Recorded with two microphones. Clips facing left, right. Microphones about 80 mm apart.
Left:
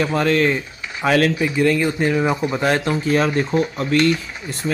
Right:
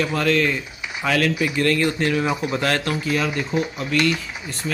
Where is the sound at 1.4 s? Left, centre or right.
Centre.